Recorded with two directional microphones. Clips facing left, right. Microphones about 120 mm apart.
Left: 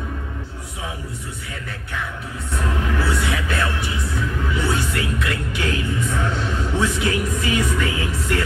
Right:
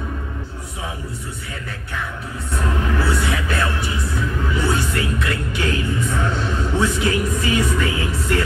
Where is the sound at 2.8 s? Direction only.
35° right (ahead or behind).